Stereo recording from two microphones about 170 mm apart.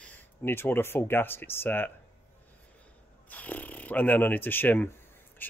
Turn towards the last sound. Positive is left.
turn(degrees=10)  # may be behind; listen again after turning